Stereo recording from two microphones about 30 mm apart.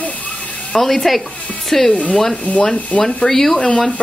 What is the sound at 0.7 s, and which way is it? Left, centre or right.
Speech, centre.